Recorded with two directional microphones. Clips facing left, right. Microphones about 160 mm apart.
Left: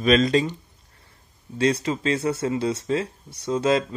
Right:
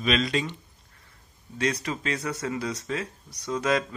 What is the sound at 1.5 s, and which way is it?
Speech, 30° left (ahead or behind).